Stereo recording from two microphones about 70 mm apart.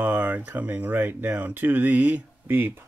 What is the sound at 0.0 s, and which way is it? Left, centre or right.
Speech, right.